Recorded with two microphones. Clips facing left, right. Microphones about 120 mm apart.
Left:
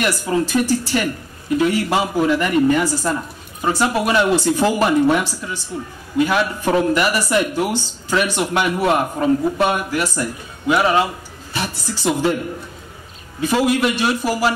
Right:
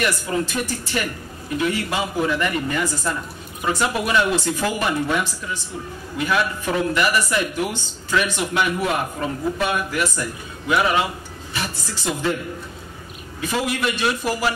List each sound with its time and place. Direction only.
0.0 s a woman's voice: 30° left (ahead or behind)
13.4 s speech: 25° left (ahead or behind)